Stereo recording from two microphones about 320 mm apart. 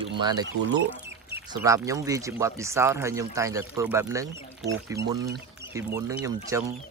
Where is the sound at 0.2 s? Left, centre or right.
Centre.